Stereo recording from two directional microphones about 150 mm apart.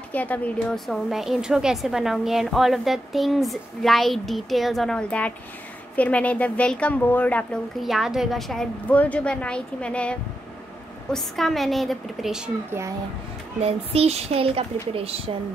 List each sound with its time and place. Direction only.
0.1 s a woman's voice: 10° left (ahead or behind)
7.8 s a woman's voice: centre (ahead or behind)
13.6 s a woman's voice: 40° right (ahead or behind)